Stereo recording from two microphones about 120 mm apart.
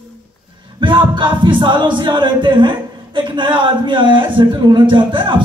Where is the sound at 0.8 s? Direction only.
45° right (ahead or behind).